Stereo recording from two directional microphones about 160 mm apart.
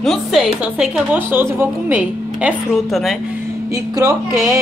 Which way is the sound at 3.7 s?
20° right (ahead or behind).